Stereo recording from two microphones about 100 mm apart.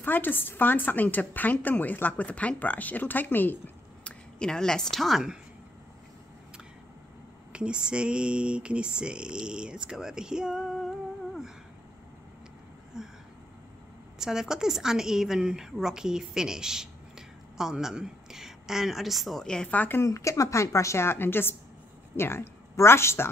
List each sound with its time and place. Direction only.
0.0 s a woman's voice: 20° left (ahead or behind)
4.4 s a woman's voice: 5° left (ahead or behind)
7.5 s speech: 10° right (ahead or behind)
12.9 s a sound: 5° right (ahead or behind)
14.1 s a woman's voice: 5° right (ahead or behind); by 20.1 s 20° left (ahead or behind)
20.1 s a woman's voice: 30° left (ahead or behind)